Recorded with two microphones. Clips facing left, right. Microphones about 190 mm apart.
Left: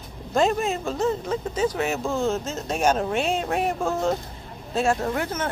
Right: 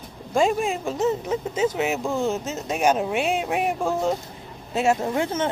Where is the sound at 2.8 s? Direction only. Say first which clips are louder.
Right 1 dB; 15° right (ahead or behind).